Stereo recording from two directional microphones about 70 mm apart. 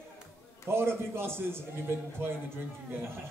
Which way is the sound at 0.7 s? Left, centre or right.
Right.